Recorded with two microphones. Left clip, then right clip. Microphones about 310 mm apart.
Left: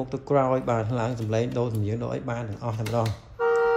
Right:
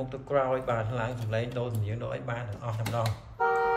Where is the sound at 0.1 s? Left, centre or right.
Centre.